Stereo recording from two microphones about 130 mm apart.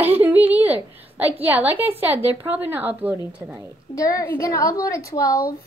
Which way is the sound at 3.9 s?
25° left (ahead or behind).